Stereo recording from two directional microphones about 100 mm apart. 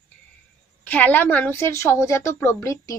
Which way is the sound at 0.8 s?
15° left (ahead or behind).